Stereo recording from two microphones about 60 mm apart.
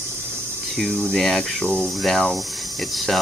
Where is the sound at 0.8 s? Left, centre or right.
Centre.